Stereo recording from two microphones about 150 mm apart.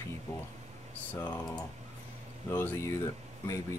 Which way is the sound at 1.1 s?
10° left (ahead or behind).